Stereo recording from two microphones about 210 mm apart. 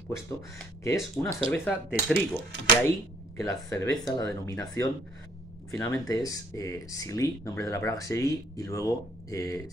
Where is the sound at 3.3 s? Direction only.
15° left (ahead or behind).